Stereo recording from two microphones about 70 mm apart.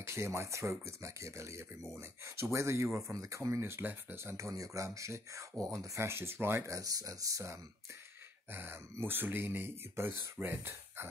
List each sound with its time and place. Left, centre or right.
0.0 s speech: right
6.6 s speech: right
8.5 s speech: right